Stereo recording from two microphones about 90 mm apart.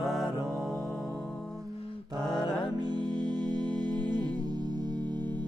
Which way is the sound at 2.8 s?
50° right (ahead or behind).